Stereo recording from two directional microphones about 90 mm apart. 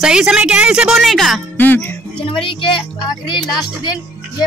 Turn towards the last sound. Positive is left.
turn(degrees=55)  # may be behind; listen again after turning